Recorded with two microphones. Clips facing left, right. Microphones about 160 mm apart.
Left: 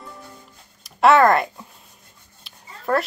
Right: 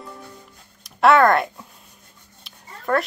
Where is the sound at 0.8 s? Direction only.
Centre (ahead or behind).